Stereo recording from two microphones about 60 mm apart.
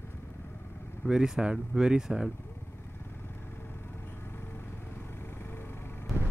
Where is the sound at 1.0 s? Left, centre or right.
Centre.